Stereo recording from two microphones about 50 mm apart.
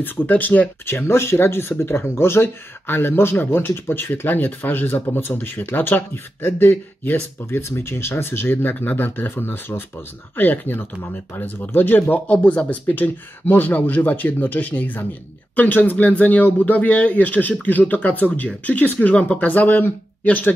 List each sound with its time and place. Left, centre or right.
0.0 s speech: left
0.8 s speech: left
12.3 s speech: left
18.9 s speech: left
19.3 s speech: left